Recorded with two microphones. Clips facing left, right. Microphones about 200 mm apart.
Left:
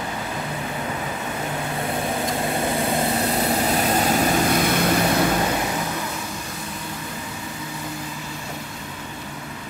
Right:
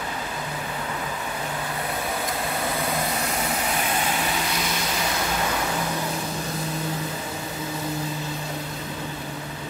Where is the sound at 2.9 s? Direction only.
35° left (ahead or behind); by 5.0 s 55° left (ahead or behind).